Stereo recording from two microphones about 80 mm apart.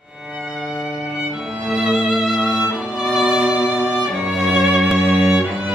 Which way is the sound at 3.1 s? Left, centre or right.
Centre.